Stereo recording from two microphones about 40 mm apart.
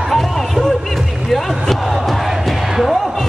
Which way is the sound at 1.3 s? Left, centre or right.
Centre.